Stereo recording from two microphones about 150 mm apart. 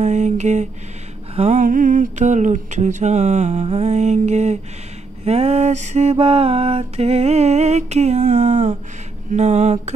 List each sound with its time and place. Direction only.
0.0 s mantra: 50° right (ahead or behind)
1.3 s a sound: 45° right (ahead or behind)
1.6 s mantra: 60° right (ahead or behind)